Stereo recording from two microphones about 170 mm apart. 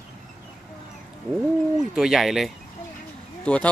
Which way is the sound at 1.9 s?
5° right (ahead or behind).